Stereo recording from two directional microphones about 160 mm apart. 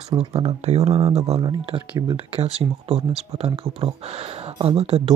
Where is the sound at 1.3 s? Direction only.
30° right (ahead or behind).